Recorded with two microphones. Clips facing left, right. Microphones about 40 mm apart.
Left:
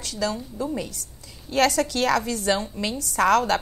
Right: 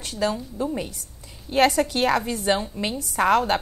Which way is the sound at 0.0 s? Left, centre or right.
Right.